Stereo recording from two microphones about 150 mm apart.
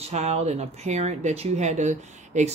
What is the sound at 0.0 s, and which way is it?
Speech, 45° right (ahead or behind).